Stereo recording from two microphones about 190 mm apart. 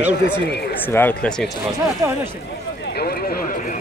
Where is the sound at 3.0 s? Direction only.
55° left (ahead or behind).